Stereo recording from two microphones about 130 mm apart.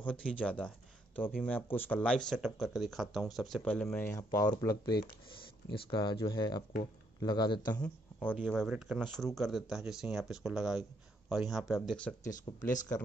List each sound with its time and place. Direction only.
0.0 s speech: 10° left (ahead or behind)
3.6 s speech: 10° left (ahead or behind)
4.1 s speech: 25° left (ahead or behind)
7.7 s speech: 15° left (ahead or behind)
8.5 s speech: centre (ahead or behind)
12.5 s speech: 30° left (ahead or behind)